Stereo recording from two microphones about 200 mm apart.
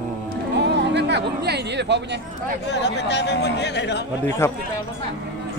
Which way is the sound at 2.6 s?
60° left (ahead or behind).